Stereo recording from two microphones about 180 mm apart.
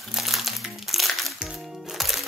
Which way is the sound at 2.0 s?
Centre (ahead or behind).